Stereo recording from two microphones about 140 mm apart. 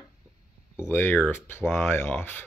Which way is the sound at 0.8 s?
15° left (ahead or behind).